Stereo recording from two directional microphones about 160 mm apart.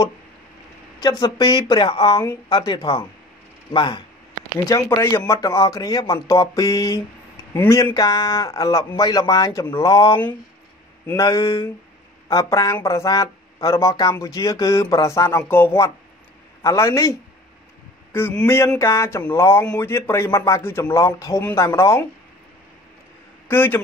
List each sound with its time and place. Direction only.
1.0 s a man's voice: 25° left (ahead or behind)
18.1 s a man's voice: 10° left (ahead or behind)
23.5 s a man's voice: 15° left (ahead or behind)